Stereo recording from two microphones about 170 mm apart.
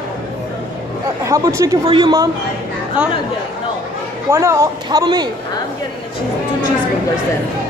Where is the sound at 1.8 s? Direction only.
30° right (ahead or behind).